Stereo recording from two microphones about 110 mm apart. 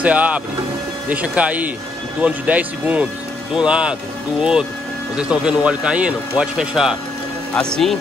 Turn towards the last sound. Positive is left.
turn(degrees=5)  # may be behind; listen again after turning